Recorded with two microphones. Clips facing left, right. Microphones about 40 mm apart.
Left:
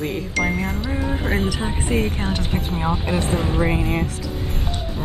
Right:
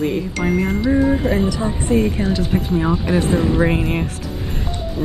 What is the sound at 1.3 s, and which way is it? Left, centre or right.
Speech, left.